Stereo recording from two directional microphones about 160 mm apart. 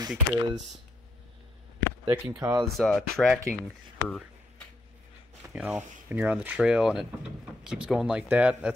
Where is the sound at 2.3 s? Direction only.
15° right (ahead or behind).